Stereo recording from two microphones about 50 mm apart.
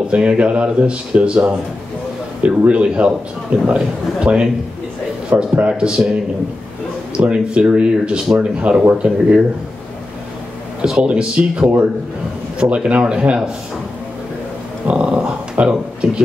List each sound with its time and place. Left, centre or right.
0.1 s speech: right
5.5 s speech: right
7.2 s speech: right
10.8 s speech: centre
14.9 s speech: right